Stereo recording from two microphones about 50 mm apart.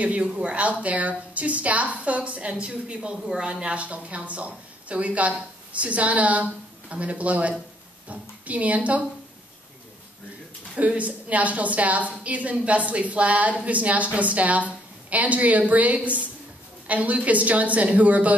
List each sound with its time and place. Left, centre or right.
0.0 s a woman's voice: right
10.8 s a woman's voice: right